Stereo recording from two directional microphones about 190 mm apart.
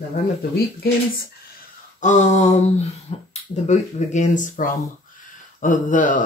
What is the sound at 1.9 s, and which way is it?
Speech, 40° left (ahead or behind).